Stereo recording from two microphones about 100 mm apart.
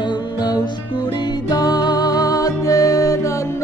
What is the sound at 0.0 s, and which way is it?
Music, 50° left (ahead or behind).